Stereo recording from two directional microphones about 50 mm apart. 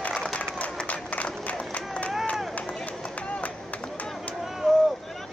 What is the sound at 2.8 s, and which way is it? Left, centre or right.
Run, left.